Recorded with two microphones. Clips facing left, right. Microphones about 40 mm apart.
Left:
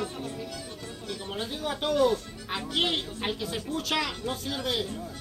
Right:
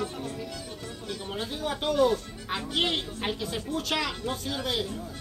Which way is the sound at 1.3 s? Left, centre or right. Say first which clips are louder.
Right 1 dB; centre.